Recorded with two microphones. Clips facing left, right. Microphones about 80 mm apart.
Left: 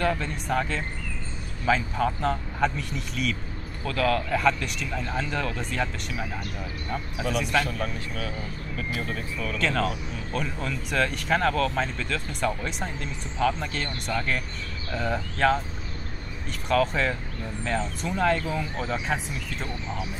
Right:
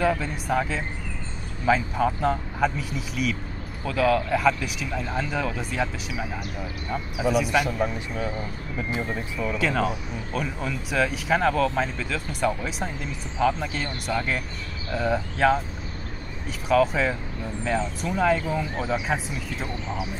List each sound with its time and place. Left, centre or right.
0.0 s speech: centre
16.6 s speech: centre